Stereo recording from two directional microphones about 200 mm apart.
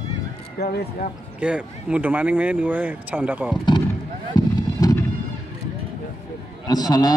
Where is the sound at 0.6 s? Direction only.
50° left (ahead or behind).